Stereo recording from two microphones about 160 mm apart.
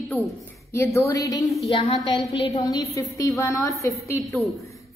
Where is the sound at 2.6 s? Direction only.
20° left (ahead or behind).